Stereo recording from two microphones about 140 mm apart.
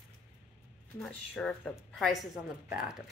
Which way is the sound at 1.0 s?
10° left (ahead or behind).